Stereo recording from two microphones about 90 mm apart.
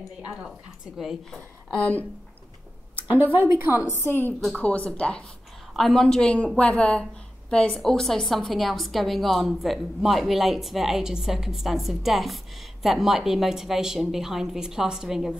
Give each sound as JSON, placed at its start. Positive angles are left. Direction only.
{"t": 0.4, "sound": "speech", "side_deg": -5}
{"t": 1.3, "sound": "speech", "side_deg": 5}
{"t": 3.3, "sound": "a woman's voice", "side_deg": -25}
{"t": 3.9, "sound": "a woman's voice", "side_deg": 25}